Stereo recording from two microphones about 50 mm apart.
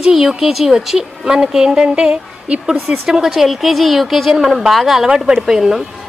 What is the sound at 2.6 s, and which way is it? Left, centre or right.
A woman's voice, centre.